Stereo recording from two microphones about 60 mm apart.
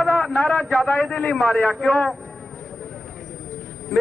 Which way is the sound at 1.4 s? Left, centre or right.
Left.